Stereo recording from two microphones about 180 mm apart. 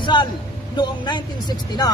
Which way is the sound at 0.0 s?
25° left (ahead or behind).